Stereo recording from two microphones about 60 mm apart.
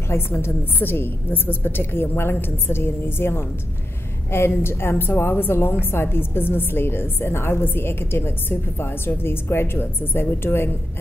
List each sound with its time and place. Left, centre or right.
0.1 s a woman's voice: left